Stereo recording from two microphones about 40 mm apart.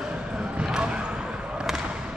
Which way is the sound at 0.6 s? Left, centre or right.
Right.